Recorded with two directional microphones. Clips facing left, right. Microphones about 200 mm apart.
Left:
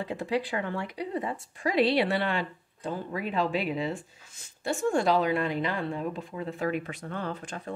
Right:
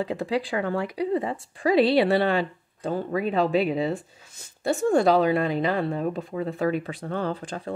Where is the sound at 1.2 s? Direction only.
30° right (ahead or behind).